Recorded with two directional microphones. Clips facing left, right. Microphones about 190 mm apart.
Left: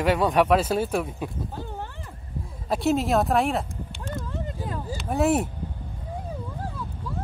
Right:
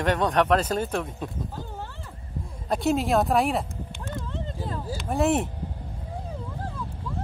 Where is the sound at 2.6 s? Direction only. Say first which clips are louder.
Left 1 dB; centre (ahead or behind).